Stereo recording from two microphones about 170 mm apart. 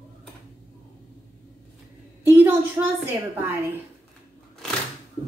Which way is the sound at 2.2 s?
10° right (ahead or behind).